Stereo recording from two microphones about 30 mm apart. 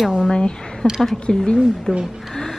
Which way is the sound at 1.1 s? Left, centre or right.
Left.